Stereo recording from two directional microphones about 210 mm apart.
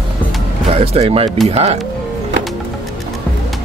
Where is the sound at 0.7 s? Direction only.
30° right (ahead or behind).